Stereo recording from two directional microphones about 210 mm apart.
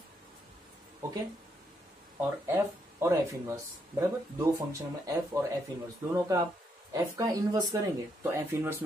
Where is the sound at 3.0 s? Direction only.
15° right (ahead or behind).